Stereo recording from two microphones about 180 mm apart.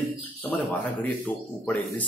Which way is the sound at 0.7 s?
10° left (ahead or behind).